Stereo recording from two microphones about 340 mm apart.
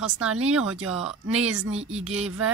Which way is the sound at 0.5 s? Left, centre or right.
Centre.